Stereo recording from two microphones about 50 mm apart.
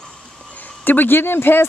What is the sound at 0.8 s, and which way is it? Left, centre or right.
Speech, left.